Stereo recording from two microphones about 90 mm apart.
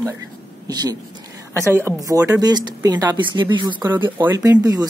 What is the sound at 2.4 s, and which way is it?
Speech, 50° right (ahead or behind).